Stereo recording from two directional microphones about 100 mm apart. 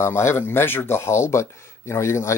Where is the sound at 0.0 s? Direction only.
25° left (ahead or behind).